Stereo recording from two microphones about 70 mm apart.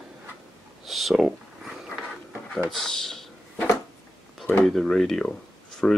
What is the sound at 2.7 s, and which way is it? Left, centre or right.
Speech, centre.